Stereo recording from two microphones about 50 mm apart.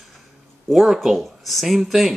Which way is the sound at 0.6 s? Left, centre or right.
Centre.